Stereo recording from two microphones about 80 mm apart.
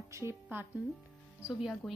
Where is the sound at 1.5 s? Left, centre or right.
Centre.